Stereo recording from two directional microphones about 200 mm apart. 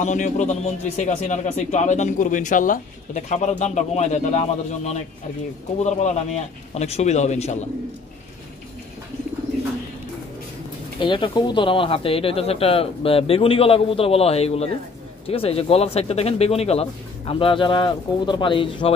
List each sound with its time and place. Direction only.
0.0 s speech: 35° left (ahead or behind)
11.0 s speech: 25° left (ahead or behind)